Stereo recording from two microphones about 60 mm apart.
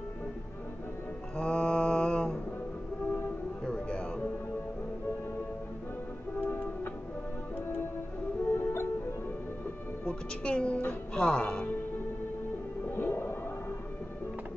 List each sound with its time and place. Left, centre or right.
1.3 s mantra: centre
3.0 s music: left
3.6 s music: centre
6.3 s music: left
10.0 s a woman's voice: centre
12.8 s whale vocalization: left